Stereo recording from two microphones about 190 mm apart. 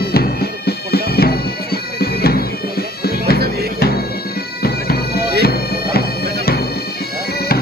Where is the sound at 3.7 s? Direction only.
55° left (ahead or behind).